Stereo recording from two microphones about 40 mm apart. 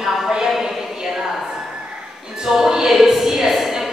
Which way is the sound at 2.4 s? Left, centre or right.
Centre.